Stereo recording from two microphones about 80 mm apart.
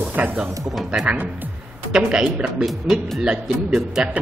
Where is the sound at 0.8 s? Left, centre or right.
Centre.